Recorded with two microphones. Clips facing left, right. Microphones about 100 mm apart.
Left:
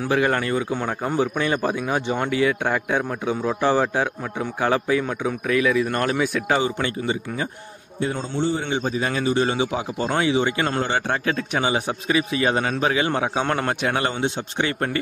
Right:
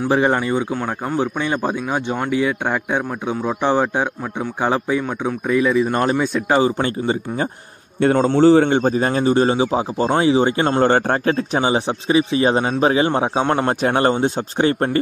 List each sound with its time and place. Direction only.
0.1 s speech: 25° right (ahead or behind)
0.4 s a man's voice: 15° right (ahead or behind)
0.7 s a man's voice: centre (ahead or behind)
4.8 s a man's voice: centre (ahead or behind)
6.6 s a man's voice: 35° right (ahead or behind)
8.0 s a man's voice: 65° right (ahead or behind)
8.6 s a man's voice: 50° right (ahead or behind); by 10.8 s 30° right (ahead or behind)
10.8 s a man's voice: 45° right (ahead or behind); by 13.7 s 20° right (ahead or behind)
13.8 s a man's voice: 35° right (ahead or behind)